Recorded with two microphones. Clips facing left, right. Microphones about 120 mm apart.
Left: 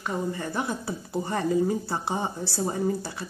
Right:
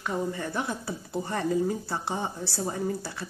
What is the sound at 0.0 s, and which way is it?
Speech, 10° left (ahead or behind).